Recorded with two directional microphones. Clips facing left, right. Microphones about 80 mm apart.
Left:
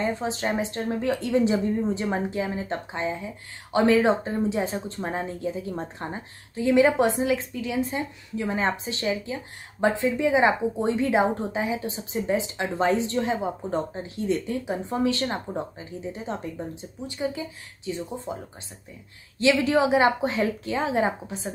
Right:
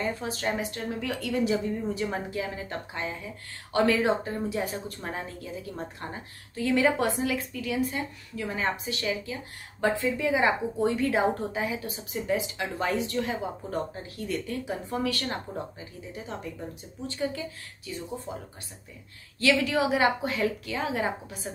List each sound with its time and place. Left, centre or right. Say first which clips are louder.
0.0 s speech: left 3 dB; left
19.4 s speech: left 4 dB; left